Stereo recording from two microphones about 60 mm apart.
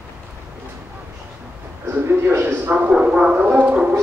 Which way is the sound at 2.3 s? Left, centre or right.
Right.